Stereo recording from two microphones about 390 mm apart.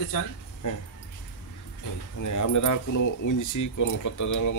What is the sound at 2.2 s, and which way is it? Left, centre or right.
Speech, left.